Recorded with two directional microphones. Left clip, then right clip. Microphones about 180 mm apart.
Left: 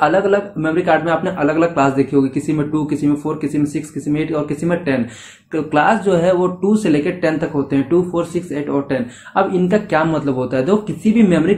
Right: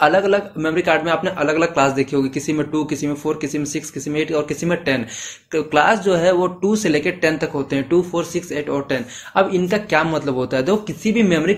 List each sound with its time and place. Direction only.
0.0 s speech: 35° right (ahead or behind)